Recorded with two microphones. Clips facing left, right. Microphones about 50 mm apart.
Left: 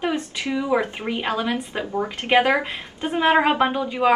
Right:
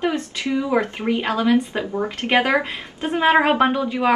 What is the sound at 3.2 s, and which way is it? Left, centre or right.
Speech, centre.